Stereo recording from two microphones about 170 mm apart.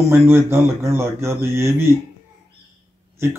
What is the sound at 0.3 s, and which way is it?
A man's voice, 15° right (ahead or behind).